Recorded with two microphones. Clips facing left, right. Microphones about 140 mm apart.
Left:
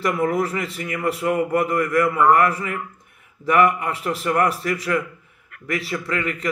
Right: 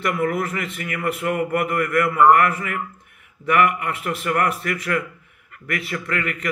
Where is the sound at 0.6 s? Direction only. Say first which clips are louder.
Left 1 dB; 35° left (ahead or behind).